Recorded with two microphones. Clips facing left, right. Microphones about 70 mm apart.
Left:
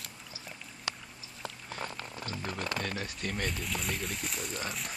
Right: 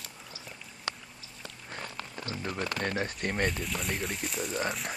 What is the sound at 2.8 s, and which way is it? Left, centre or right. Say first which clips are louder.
Speech: right 5 dB; right.